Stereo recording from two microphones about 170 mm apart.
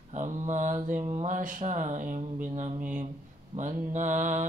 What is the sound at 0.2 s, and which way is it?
Mantra, 45° right (ahead or behind).